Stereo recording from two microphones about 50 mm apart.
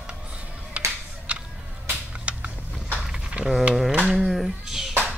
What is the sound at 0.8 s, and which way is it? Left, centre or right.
Music, right.